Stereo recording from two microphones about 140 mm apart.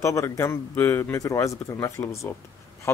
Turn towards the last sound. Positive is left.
turn(degrees=20)  # may be behind; listen again after turning